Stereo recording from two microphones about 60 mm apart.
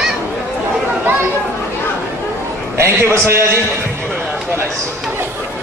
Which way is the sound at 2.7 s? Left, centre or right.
Right.